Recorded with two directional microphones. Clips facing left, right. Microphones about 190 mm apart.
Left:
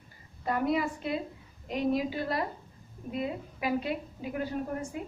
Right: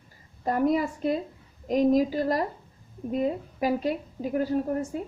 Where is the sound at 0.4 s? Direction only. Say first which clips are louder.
Right 5 dB; 40° right (ahead or behind).